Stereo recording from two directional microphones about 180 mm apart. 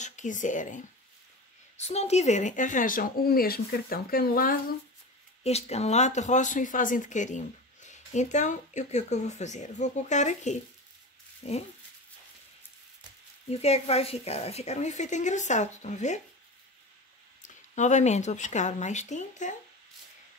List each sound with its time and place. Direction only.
0.0 s speech: 45° left (ahead or behind)
5.4 s speech: 35° left (ahead or behind)
13.5 s speech: 35° left (ahead or behind)
17.4 s speech: 40° left (ahead or behind)